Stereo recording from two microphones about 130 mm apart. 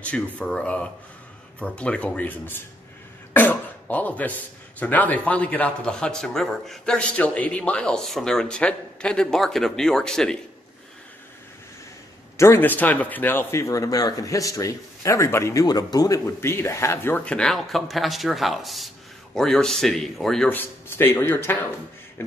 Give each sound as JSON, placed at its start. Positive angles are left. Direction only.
{"t": 0.0, "sound": "a man's voice", "side_deg": 10}
{"t": 12.4, "sound": "speech", "side_deg": 20}
{"t": 20.4, "sound": "a man's voice", "side_deg": 15}